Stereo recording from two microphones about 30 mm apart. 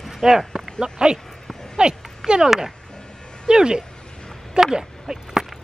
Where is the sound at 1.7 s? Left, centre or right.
Right.